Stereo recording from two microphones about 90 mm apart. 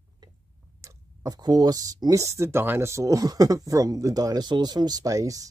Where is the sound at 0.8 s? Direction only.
45° right (ahead or behind).